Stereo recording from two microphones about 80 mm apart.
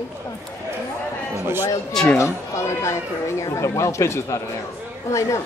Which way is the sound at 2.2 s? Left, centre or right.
Left.